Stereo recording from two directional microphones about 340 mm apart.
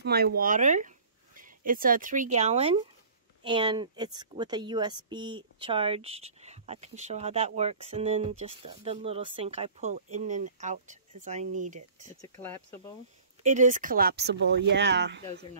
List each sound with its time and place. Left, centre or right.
0.0 s speech: right
12.2 s speech: centre
13.4 s speech: right